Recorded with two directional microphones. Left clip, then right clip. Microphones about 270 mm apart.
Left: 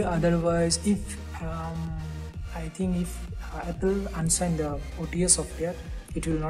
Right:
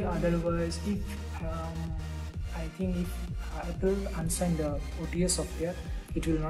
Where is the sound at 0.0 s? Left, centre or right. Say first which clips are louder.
Left 5 dB; left.